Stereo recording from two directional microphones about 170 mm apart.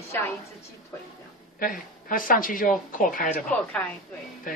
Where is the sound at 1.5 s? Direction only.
55° left (ahead or behind).